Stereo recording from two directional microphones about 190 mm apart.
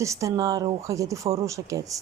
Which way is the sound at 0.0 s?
15° right (ahead or behind).